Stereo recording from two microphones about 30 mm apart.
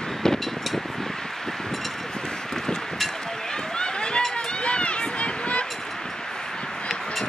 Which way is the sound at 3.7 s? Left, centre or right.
Left.